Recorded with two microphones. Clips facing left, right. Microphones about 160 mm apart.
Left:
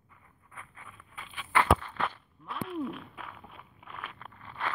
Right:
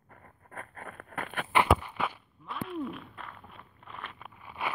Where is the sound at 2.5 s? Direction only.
Centre (ahead or behind).